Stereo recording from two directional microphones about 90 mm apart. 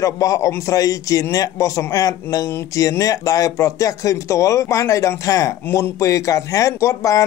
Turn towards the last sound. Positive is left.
turn(degrees=35)  # may be behind; listen again after turning